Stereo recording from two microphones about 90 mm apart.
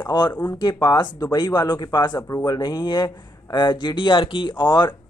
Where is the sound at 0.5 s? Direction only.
50° left (ahead or behind).